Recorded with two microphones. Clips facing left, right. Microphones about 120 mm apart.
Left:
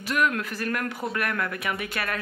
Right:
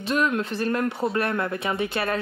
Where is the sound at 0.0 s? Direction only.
25° right (ahead or behind).